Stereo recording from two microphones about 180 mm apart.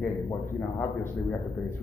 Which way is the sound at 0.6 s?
10° left (ahead or behind).